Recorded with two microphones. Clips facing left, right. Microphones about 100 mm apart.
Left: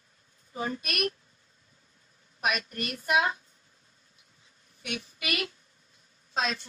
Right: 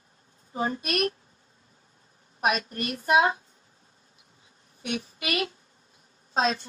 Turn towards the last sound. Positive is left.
turn(degrees=-40)  # may be behind; listen again after turning